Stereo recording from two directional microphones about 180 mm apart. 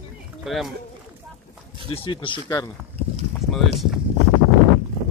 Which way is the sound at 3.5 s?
Centre (ahead or behind).